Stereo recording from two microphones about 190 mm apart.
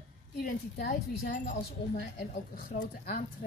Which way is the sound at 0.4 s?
50° left (ahead or behind).